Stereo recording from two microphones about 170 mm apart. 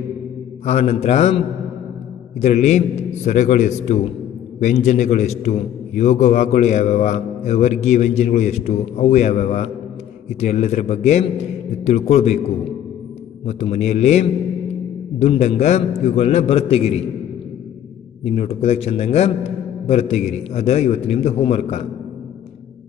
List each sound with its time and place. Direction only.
0.7 s a man's voice: 40° left (ahead or behind)
2.4 s a man's voice: 40° left (ahead or behind)
18.2 s a man's voice: 40° left (ahead or behind)